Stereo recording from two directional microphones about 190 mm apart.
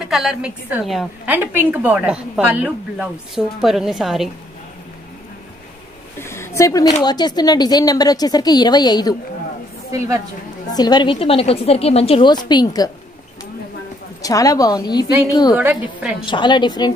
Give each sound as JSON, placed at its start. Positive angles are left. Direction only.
{"t": 0.0, "sound": "a woman's voice", "side_deg": 0}
{"t": 6.1, "sound": "a sound", "side_deg": 15}
{"t": 7.0, "sound": "a woman's voice", "side_deg": 20}
{"t": 9.8, "sound": "a woman's voice", "side_deg": -15}
{"t": 10.7, "sound": "a woman's voice", "side_deg": 20}
{"t": 14.2, "sound": "a woman's voice", "side_deg": 20}
{"t": 15.5, "sound": "a woman's voice", "side_deg": -5}
{"t": 16.3, "sound": "a woman's voice", "side_deg": 25}